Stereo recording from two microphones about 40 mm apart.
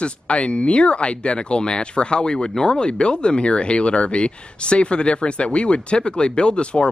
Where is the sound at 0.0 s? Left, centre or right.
Left.